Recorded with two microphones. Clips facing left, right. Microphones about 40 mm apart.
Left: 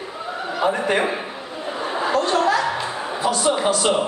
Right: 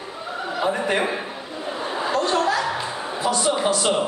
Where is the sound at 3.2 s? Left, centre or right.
Centre.